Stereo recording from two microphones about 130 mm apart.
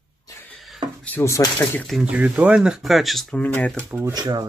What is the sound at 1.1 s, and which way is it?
Speech, 20° left (ahead or behind).